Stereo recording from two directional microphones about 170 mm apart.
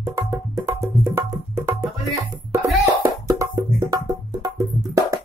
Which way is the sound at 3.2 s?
20° right (ahead or behind).